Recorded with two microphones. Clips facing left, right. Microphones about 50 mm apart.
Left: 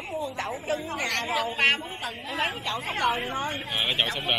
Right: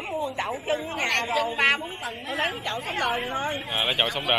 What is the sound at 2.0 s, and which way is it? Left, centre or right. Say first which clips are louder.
Speech: right 1 dB; right.